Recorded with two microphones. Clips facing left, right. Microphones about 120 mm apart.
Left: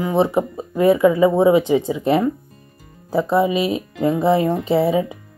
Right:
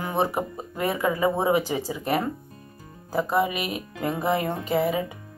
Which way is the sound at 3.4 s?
25° left (ahead or behind).